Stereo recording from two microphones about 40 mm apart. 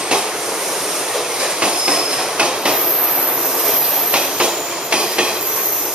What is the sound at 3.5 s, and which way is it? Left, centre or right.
Train, centre.